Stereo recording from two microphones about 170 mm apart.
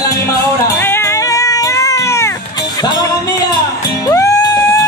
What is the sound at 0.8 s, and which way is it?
Cat, 15° left (ahead or behind).